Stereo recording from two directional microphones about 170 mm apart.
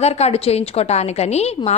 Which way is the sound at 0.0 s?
40° left (ahead or behind).